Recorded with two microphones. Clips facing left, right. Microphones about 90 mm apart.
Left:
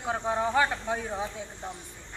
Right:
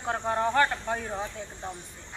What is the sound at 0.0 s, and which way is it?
A man's voice, 5° left (ahead or behind).